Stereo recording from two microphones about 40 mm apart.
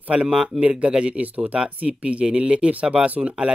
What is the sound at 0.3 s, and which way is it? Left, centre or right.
Speech, centre.